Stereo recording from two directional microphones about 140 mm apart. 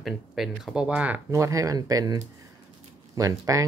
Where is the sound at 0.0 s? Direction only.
Centre (ahead or behind).